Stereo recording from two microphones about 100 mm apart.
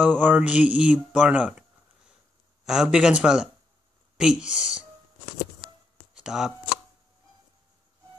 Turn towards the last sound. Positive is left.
turn(degrees=-5)  # may be behind; listen again after turning